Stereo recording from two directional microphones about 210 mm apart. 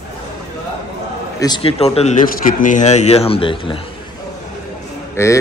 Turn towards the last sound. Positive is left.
turn(degrees=15)  # may be behind; listen again after turning